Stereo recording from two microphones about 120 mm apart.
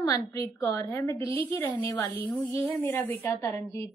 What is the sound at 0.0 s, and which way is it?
A woman's voice, 30° left (ahead or behind).